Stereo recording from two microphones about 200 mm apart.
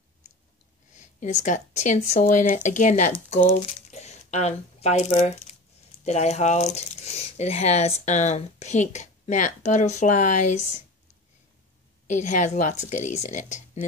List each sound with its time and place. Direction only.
0.9 s speech: 35° left (ahead or behind)
12.1 s speech: 35° left (ahead or behind)